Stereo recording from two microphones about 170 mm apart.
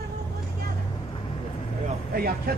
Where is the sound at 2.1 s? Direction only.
60° right (ahead or behind).